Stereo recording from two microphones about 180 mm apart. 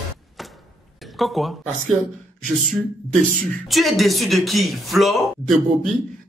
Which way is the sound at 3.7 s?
Centre (ahead or behind).